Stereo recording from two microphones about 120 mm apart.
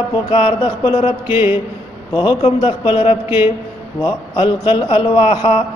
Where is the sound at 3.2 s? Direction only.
15° right (ahead or behind).